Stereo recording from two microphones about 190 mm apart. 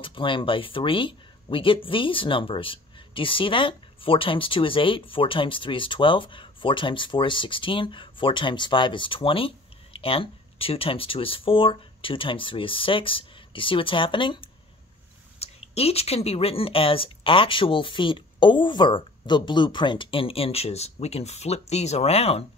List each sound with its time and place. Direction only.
0.0 s speech: 25° left (ahead or behind)